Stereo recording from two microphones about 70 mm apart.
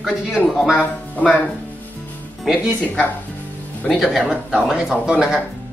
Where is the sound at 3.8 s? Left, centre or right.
Centre.